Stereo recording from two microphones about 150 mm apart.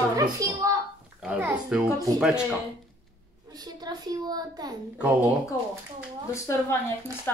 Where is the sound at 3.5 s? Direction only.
25° right (ahead or behind).